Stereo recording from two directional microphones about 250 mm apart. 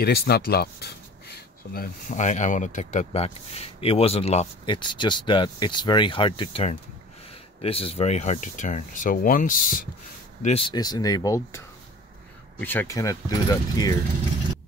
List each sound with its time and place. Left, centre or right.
0.0 s speech: left
10.4 s speech: left